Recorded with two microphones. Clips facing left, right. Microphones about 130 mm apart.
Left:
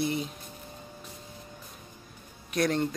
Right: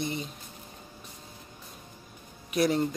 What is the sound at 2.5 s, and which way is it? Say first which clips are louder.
Speech: right 1 dB; 5° right (ahead or behind).